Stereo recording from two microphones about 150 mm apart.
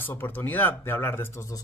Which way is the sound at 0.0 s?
15° left (ahead or behind).